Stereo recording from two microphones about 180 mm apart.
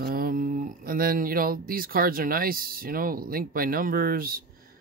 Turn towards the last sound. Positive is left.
turn(degrees=-55)  # may be behind; listen again after turning